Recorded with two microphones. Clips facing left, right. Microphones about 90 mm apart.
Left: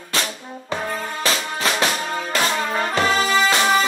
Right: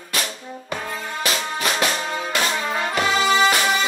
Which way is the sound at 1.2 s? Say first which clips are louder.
Left 1 dB; 35° left (ahead or behind).